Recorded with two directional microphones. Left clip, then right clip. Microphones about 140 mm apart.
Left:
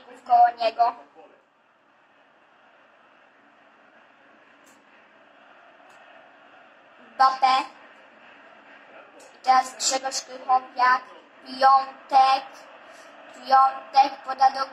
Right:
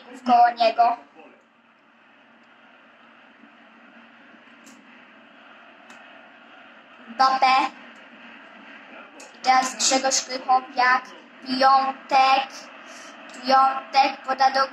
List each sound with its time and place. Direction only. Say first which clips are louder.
0.1 s a woman's voice: right 1 dB; 35° right (ahead or behind)
7.2 s speech: right 1 dB; 40° right (ahead or behind)
9.3 s speech: right 1 dB; 40° right (ahead or behind)
11.8 s a sound: right 7 dB; 20° right (ahead or behind)
12.4 s speech: right 4 dB; 40° right (ahead or behind)
12.7 s a sound: right 4 dB; 20° right (ahead or behind)
13.4 s speech: even; 45° right (ahead or behind)